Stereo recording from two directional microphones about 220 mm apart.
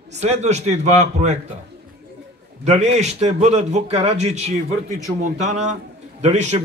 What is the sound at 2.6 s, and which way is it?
A man's voice, 30° right (ahead or behind).